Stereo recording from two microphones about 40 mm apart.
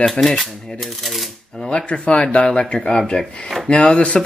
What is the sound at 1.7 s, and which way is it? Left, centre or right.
Speech, left.